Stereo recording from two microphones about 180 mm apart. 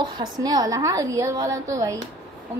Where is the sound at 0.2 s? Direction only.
20° right (ahead or behind).